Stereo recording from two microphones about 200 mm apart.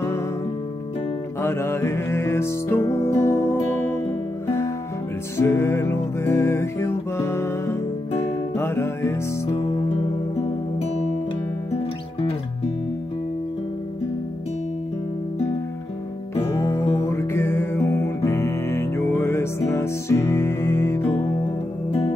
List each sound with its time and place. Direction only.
1.4 s music: 10° left (ahead or behind)
5.4 s music: 15° left (ahead or behind)
11.7 s music: 30° left (ahead or behind)
16.9 s music: 15° left (ahead or behind)